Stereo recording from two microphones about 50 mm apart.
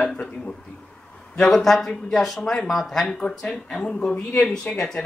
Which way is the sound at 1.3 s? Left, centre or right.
Centre.